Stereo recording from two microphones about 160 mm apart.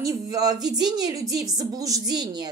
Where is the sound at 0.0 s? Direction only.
20° right (ahead or behind).